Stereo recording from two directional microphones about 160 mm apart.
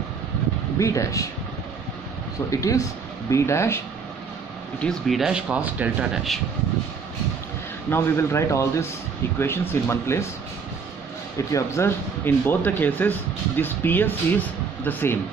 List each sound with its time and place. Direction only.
0.7 s speech: 20° left (ahead or behind)
2.5 s speech: 20° left (ahead or behind)
4.7 s speech: 5° left (ahead or behind)
7.9 s speech: 15° left (ahead or behind)
11.5 s speech: 15° left (ahead or behind)